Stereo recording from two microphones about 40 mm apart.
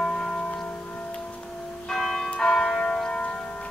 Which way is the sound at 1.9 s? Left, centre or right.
Centre.